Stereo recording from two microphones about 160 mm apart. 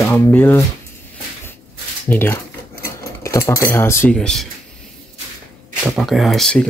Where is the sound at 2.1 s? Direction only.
10° left (ahead or behind).